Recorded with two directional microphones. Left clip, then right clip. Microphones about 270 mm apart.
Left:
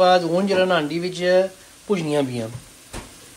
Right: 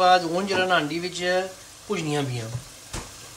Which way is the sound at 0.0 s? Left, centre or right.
Centre.